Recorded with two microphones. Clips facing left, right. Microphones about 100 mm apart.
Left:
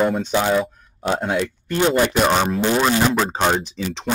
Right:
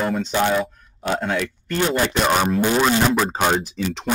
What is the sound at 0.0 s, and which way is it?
A man's voice, 10° left (ahead or behind).